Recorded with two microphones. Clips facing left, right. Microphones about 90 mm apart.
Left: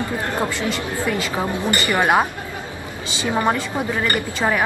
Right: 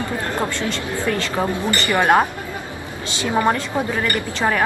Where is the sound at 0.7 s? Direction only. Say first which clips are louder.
Even; 10° left (ahead or behind).